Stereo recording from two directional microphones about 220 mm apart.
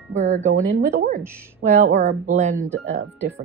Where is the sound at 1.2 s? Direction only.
10° right (ahead or behind).